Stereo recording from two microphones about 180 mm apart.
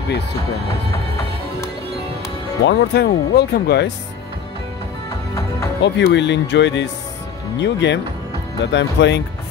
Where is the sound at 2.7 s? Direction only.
65° left (ahead or behind).